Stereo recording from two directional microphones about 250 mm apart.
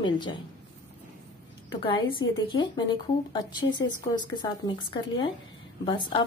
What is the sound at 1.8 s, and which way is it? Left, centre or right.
A woman's voice, left.